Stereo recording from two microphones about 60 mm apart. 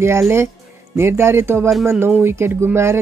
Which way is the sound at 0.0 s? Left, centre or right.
Right.